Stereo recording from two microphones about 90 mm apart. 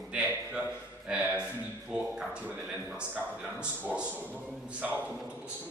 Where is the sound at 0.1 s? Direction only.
10° right (ahead or behind).